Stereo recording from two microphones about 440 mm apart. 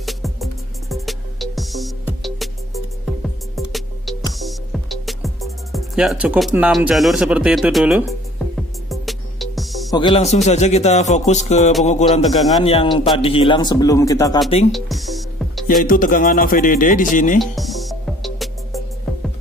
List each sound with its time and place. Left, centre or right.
0.0 s music: centre
3.5 s music: centre
9.9 s a man's voice: centre
14.7 s music: centre
15.6 s a man's voice: centre
17.4 s music: centre